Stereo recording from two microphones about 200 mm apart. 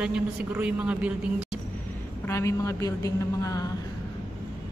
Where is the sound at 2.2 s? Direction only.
15° left (ahead or behind).